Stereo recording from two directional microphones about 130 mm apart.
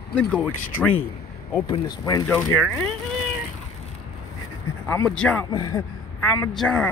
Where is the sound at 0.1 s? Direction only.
10° left (ahead or behind).